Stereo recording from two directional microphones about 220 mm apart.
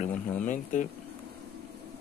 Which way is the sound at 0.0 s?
35° left (ahead or behind).